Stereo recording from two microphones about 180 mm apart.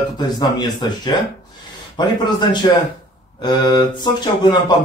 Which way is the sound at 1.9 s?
25° left (ahead or behind).